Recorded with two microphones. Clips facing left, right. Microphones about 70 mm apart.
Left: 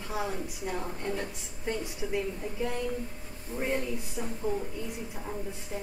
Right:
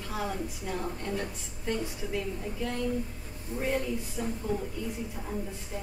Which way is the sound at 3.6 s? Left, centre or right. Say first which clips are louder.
Right 1 dB; centre.